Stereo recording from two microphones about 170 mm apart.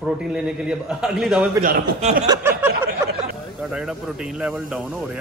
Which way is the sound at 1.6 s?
55° right (ahead or behind).